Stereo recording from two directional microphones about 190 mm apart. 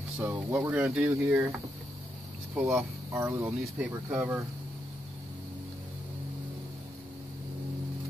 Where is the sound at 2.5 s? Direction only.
10° right (ahead or behind).